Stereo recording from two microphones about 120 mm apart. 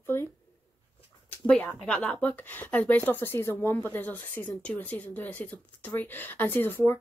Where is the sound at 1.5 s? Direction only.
10° left (ahead or behind).